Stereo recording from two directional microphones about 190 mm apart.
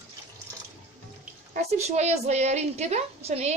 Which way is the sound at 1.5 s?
35° right (ahead or behind).